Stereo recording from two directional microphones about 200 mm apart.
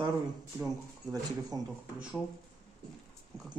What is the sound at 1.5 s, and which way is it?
Speech, 20° right (ahead or behind).